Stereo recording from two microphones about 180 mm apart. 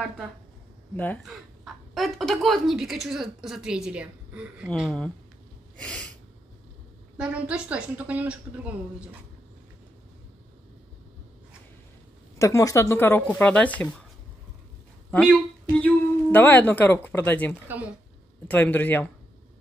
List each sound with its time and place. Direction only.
0.9 s speech: 10° left (ahead or behind)
5.8 s gasp: 5° left (ahead or behind)
7.2 s a woman's voice: 5° right (ahead or behind)
12.4 s speech: 15° left (ahead or behind)
15.0 s speech: 5° left (ahead or behind)